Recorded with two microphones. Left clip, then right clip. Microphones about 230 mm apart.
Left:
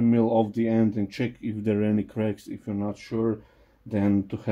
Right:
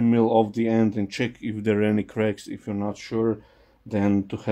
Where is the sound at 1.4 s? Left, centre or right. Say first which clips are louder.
Right 4 dB; right.